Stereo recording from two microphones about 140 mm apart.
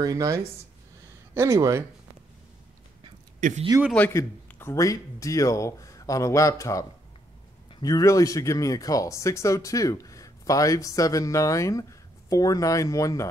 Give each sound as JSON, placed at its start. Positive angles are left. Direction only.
{"t": 0.0, "sound": "speech", "side_deg": -25}
{"t": 3.3, "sound": "speech", "side_deg": -60}
{"t": 3.9, "sound": "speech", "side_deg": 10}